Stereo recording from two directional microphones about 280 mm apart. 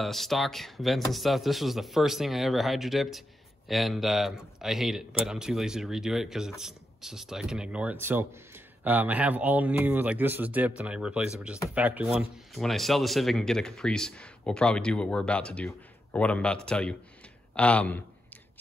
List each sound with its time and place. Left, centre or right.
0.0 s speech: centre